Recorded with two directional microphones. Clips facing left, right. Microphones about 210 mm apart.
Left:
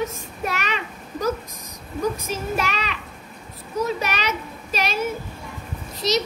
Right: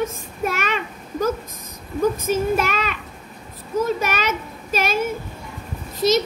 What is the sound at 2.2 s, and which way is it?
Child singing, 50° right (ahead or behind).